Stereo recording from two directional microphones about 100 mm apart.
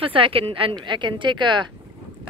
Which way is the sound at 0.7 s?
50° right (ahead or behind).